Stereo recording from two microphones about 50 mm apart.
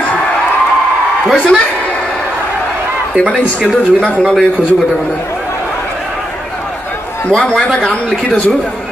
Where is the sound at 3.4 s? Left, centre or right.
Left.